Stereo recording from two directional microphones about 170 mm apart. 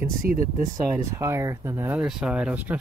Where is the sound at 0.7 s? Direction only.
15° right (ahead or behind).